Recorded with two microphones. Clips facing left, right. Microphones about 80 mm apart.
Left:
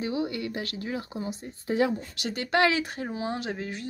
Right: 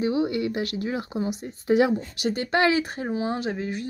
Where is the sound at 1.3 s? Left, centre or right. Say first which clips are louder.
Right 9 dB; right.